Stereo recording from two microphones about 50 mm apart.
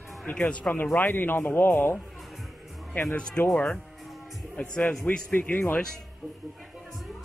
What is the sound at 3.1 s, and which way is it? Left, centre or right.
Speech, centre.